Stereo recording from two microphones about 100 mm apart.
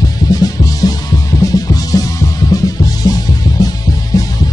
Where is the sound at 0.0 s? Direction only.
40° left (ahead or behind).